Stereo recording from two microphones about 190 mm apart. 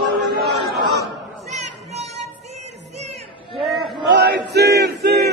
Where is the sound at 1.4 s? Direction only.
35° right (ahead or behind).